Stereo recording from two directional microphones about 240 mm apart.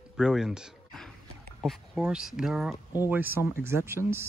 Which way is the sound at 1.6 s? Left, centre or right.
Centre.